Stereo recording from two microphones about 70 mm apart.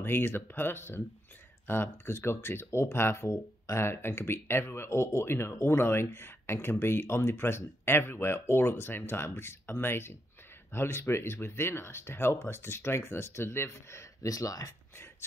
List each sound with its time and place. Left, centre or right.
0.0 s speech: left
14.3 s speech: left